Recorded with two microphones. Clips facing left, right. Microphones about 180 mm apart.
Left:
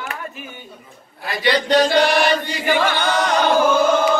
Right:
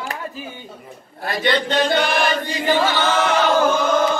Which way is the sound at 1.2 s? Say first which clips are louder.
Even; 50° right (ahead or behind).